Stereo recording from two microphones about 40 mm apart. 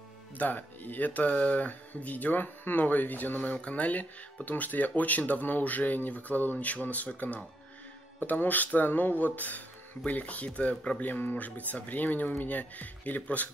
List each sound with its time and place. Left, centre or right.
0.4 s speech: left
3.5 s speech: left
8.2 s speech: left
11.0 s speech: left